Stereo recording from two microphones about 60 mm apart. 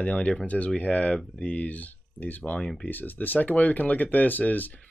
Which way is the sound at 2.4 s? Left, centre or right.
Centre.